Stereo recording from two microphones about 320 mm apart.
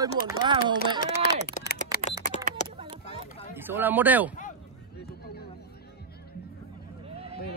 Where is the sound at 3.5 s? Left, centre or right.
Centre.